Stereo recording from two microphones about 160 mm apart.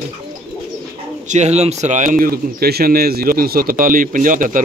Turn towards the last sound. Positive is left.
turn(degrees=-55)  # may be behind; listen again after turning